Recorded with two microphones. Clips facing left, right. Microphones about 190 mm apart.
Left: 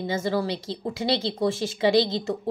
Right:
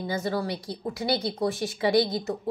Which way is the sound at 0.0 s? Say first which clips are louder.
Left 3 dB; 25° left (ahead or behind).